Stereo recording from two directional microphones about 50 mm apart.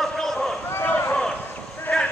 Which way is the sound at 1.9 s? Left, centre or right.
Centre.